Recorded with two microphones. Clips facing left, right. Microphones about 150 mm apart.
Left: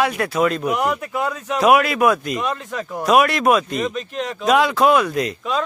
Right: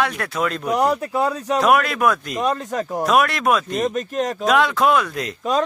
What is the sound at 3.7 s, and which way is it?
Speech, 45° right (ahead or behind).